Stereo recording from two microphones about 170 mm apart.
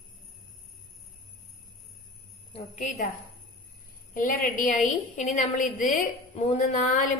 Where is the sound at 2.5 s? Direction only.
45° left (ahead or behind).